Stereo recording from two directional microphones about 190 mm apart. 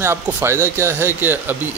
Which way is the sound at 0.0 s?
10° right (ahead or behind).